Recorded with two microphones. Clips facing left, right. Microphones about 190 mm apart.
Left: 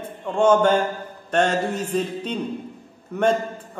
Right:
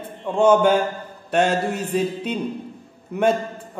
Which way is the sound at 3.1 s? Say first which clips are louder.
Right 1 dB; 10° right (ahead or behind).